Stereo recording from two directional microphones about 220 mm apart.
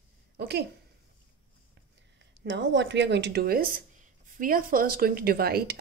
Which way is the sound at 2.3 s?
55° right (ahead or behind).